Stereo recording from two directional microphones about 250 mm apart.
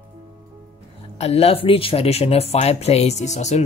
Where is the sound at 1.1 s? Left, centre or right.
Left.